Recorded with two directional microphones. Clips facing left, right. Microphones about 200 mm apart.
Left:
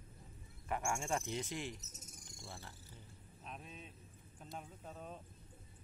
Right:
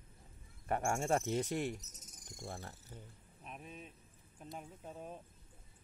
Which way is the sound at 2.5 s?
45° right (ahead or behind).